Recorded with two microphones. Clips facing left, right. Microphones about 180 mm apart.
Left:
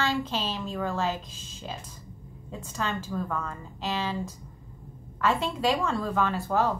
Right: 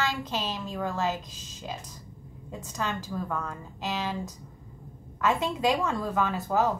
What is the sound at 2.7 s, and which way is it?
A woman's voice, 5° right (ahead or behind).